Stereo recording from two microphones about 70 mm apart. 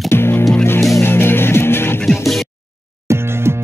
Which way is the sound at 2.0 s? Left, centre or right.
Centre.